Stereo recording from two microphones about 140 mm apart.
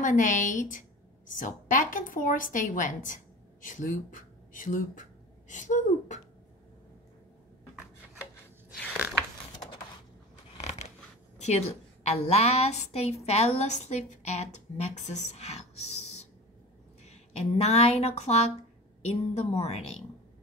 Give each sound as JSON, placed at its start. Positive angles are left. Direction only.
{"t": 0.0, "sound": "a woman's voice", "side_deg": 65}
{"t": 5.5, "sound": "a woman's voice", "side_deg": 60}
{"t": 10.6, "sound": "scissors", "side_deg": 50}
{"t": 11.3, "sound": "a sound", "side_deg": 50}
{"t": 12.1, "sound": "a woman's voice", "side_deg": 50}